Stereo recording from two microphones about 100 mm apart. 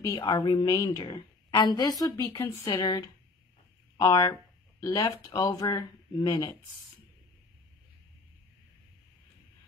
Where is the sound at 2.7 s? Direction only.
40° left (ahead or behind).